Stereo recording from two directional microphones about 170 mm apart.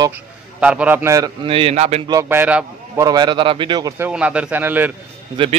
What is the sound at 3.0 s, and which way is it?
A man's voice, 25° right (ahead or behind).